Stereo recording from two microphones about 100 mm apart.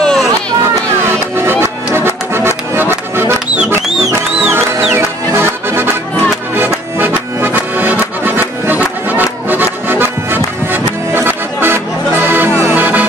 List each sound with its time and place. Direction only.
0.0 s chatter: 5° left (ahead or behind)
1.3 s music: 25° right (ahead or behind)
4.4 s music: 25° right (ahead or behind)
7.0 s music: 20° right (ahead or behind)